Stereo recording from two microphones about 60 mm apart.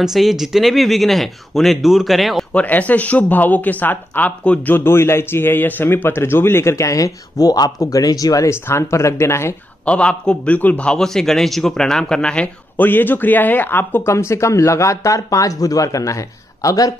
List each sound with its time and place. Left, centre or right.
0.0 s speech: centre
2.5 s speech: left
4.8 s speech: left
8.5 s speech: left
9.8 s speech: centre
10.9 s speech: centre
12.7 s speech: left
14.1 s speech: left